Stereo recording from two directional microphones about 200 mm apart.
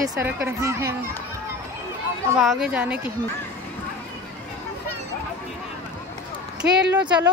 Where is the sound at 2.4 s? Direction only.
Centre (ahead or behind).